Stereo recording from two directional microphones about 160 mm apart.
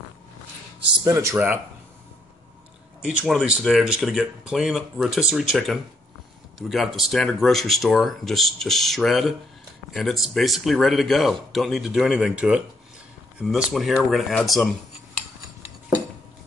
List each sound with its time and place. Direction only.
1.0 s speech: 20° right (ahead or behind)
3.0 s speech: 5° right (ahead or behind)